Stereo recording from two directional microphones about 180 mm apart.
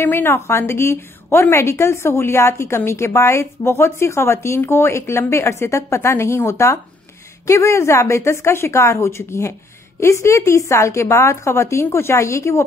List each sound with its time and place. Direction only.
0.0 s a woman's voice: 10° left (ahead or behind)